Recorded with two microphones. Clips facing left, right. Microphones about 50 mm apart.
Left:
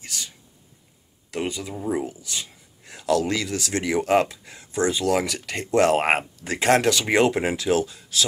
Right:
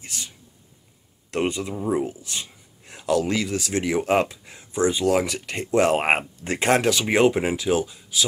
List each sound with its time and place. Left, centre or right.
0.0 s whispering: right
1.4 s speech: right
6.3 s speech: right
6.7 s speech: centre